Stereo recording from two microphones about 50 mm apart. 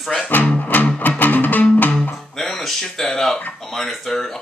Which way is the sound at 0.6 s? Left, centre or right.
Left.